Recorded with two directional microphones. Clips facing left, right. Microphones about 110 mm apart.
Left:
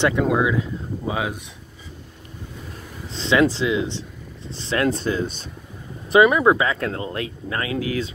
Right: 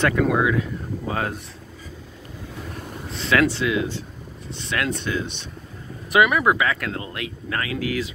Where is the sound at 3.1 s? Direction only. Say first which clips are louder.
Left 2 dB; 30° left (ahead or behind).